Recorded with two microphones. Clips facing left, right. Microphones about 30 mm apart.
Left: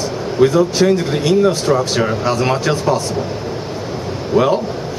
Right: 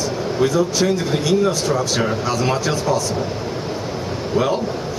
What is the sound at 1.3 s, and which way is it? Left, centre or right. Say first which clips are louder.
Speech: left 5 dB; left.